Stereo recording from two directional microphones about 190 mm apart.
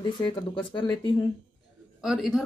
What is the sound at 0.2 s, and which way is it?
Speech, 25° left (ahead or behind).